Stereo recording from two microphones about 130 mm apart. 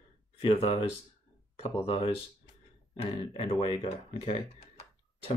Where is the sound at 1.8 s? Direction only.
45° left (ahead or behind).